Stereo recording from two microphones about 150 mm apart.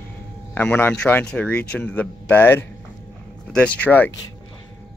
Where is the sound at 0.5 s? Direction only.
10° left (ahead or behind).